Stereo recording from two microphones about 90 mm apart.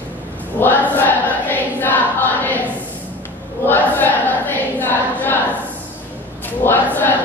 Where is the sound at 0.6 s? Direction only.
20° left (ahead or behind).